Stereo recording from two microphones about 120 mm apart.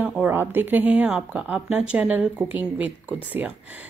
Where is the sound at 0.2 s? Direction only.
15° right (ahead or behind).